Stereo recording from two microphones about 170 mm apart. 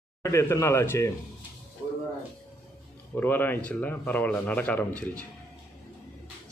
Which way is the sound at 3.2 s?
10° left (ahead or behind).